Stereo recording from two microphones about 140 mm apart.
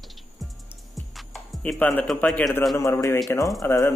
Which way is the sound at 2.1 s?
5° left (ahead or behind).